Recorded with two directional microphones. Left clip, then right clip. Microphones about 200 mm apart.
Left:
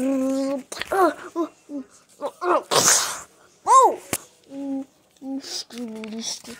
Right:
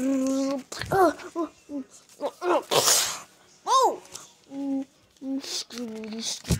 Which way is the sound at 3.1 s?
5° left (ahead or behind).